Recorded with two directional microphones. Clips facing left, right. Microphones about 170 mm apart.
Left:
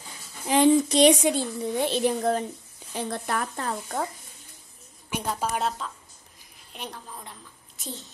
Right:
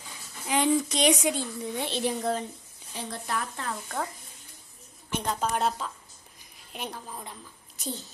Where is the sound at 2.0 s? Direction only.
50° left (ahead or behind).